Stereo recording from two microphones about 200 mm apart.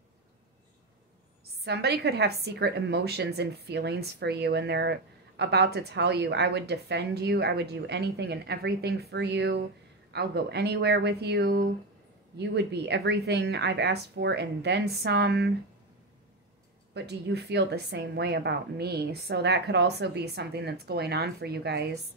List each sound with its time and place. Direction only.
1.6 s a woman's voice: 55° right (ahead or behind)
16.9 s a woman's voice: 55° right (ahead or behind)